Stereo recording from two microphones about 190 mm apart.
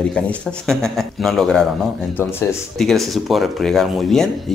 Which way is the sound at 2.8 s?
Centre (ahead or behind).